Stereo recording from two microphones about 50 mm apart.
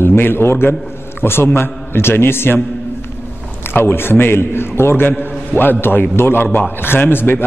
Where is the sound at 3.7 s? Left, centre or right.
Left.